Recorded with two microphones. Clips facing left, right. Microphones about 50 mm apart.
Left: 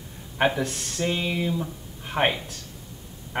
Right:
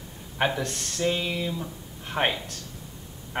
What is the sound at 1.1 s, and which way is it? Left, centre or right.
Speech, centre.